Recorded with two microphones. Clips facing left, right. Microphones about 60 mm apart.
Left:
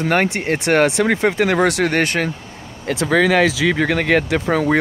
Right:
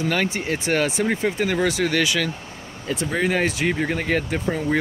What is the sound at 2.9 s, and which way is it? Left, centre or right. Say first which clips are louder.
Speech: left 7 dB; left.